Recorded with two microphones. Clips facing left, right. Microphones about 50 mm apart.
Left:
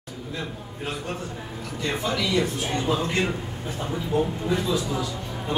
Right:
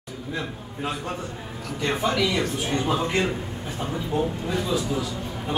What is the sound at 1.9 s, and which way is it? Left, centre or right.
Speech, right.